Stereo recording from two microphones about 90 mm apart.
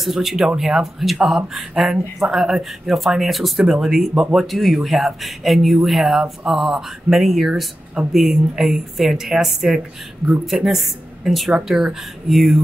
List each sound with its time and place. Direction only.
0.0 s speech: centre (ahead or behind)